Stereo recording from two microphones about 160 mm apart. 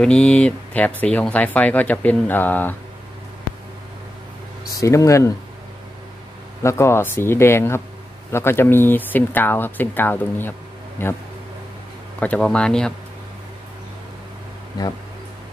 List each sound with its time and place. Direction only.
0.0 s speech: 5° left (ahead or behind)
4.7 s speech: 20° left (ahead or behind)
6.6 s speech: 15° left (ahead or behind)
12.2 s speech: 5° left (ahead or behind)